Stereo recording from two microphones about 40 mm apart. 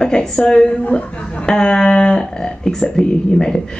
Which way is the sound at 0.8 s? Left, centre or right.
Left.